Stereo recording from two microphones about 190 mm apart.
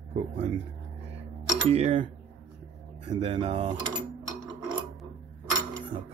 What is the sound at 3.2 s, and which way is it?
Speech, 30° right (ahead or behind).